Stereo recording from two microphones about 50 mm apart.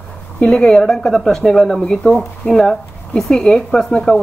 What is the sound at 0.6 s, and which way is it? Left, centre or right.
Speech, centre.